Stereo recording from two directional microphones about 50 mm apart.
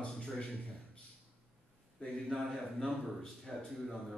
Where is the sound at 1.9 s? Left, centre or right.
Centre.